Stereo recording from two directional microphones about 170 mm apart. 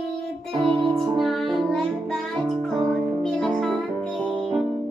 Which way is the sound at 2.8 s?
5° left (ahead or behind).